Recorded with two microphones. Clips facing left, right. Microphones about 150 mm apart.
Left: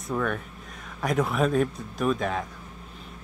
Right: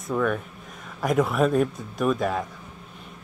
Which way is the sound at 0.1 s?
Centre (ahead or behind).